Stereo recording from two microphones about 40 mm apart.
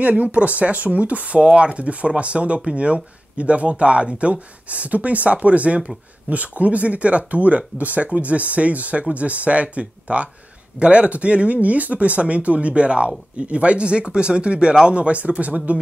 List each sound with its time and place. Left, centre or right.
0.0 s speech: right